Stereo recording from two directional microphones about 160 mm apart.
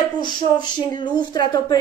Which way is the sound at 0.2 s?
30° left (ahead or behind).